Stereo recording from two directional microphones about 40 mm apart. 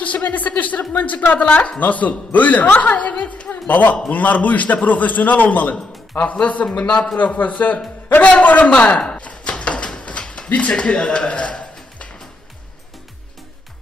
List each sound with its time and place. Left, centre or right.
0.0 s a woman's voice: left
3.6 s a man's voice: left
6.9 s a man's voice: centre
7.2 s a woman's voice: left
8.7 s speech: left
9.2 s a sound: left
10.7 s a man's voice: left